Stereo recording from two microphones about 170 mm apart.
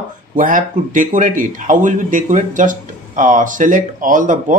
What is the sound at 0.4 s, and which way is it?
A man's voice, 50° right (ahead or behind).